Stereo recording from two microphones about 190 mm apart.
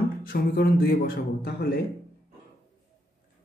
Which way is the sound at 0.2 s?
50° left (ahead or behind).